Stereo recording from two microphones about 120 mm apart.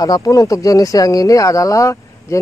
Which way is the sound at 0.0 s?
30° left (ahead or behind).